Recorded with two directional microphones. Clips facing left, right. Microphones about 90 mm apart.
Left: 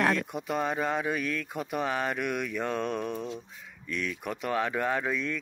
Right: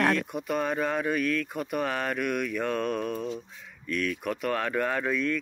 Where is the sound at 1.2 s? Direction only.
25° left (ahead or behind).